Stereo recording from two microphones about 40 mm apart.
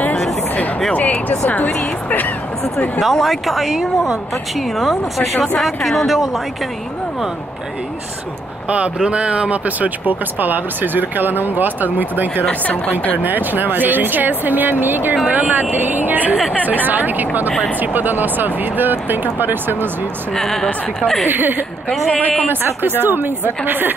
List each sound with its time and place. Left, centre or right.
0.9 s speech: left
3.0 s speech: centre
8.6 s speech: right
15.2 s speech: right
20.3 s speech: centre
21.3 s a woman's voice: right